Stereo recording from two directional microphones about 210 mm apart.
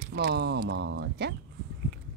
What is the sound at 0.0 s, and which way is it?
Speech, 40° right (ahead or behind).